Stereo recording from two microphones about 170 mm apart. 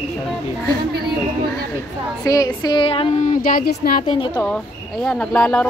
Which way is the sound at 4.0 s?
30° left (ahead or behind).